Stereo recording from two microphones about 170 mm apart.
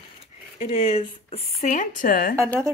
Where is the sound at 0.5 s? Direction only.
35° left (ahead or behind); by 2.3 s 55° left (ahead or behind).